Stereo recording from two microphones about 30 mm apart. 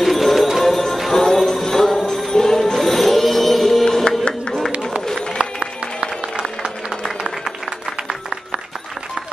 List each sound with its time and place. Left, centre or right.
0.0 s music: centre
3.8 s music: left
5.4 s a sound: right